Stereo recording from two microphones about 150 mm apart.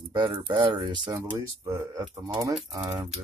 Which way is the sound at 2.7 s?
25° right (ahead or behind).